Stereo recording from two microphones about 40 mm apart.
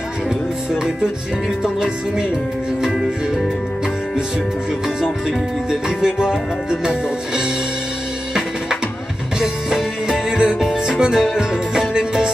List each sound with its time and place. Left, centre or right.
1.6 s music: centre
5.7 s music: centre
9.4 s music: centre